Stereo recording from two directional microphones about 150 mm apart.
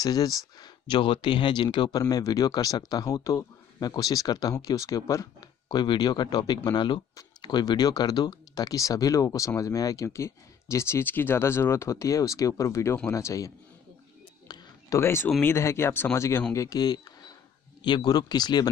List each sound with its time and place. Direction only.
0.0 s speech: 25° left (ahead or behind)
14.5 s a sound: 20° left (ahead or behind)
15.4 s speech: 15° left (ahead or behind)